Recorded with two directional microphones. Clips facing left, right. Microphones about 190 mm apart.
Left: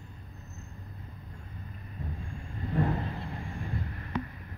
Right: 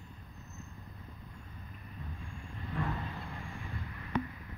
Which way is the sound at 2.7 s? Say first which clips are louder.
Left 7 dB; 40° left (ahead or behind).